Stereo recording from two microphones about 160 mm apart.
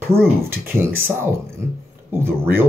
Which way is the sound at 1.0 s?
15° right (ahead or behind).